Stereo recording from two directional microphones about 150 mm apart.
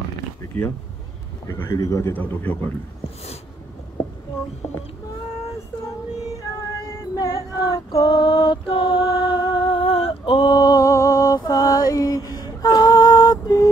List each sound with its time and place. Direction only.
1.5 s speech: 20° left (ahead or behind)
7.2 s female singing: 25° left (ahead or behind)